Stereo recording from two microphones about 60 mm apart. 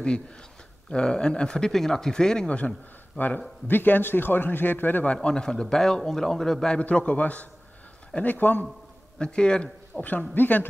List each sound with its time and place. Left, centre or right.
0.8 s speech: centre
3.6 s a man's voice: left
5.1 s speech: centre
6.8 s a man's voice: left
9.2 s a man's voice: centre; by 10.7 s left